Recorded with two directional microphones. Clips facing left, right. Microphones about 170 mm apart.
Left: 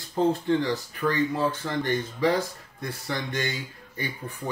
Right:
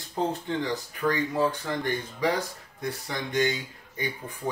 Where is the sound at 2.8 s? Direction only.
15° right (ahead or behind).